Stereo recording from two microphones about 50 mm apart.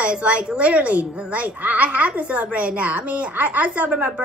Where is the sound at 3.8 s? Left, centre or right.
Right.